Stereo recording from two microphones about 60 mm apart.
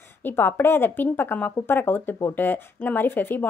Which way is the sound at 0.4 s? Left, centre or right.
Left.